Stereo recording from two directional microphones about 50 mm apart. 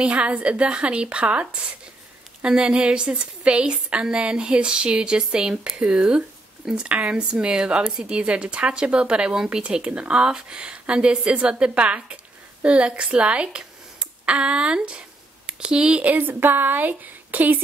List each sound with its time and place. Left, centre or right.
0.0 s a woman's voice: right
16.0 s a woman's voice: right